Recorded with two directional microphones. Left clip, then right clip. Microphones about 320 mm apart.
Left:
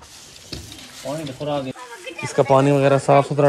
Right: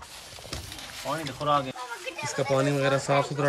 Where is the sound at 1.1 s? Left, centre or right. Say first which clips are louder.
Left 1 dB; right.